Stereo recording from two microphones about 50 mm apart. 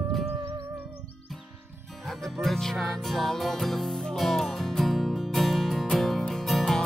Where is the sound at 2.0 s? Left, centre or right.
Centre.